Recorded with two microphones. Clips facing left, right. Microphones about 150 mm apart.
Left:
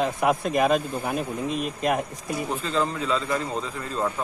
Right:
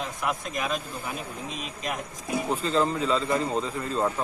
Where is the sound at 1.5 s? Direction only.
5° left (ahead or behind).